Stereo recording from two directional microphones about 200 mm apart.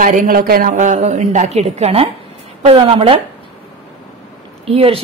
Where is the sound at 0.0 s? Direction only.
45° right (ahead or behind).